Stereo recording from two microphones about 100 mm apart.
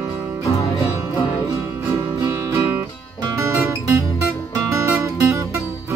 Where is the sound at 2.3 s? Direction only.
30° right (ahead or behind).